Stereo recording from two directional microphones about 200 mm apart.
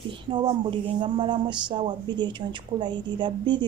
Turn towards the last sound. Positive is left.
turn(degrees=-25)  # may be behind; listen again after turning